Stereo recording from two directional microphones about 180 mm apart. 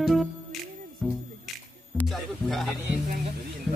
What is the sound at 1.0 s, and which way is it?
Music, centre (ahead or behind).